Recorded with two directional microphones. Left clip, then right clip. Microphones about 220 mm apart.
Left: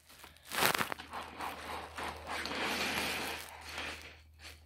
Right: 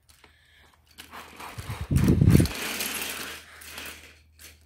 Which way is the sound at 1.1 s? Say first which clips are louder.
Even; 40° right (ahead or behind).